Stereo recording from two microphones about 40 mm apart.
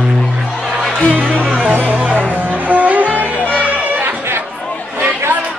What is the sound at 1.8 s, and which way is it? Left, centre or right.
Music, right.